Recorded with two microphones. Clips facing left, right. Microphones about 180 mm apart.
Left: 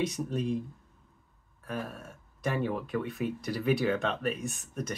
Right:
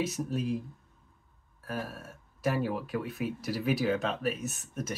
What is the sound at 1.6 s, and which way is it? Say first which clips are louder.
Speech: even; 5° right (ahead or behind).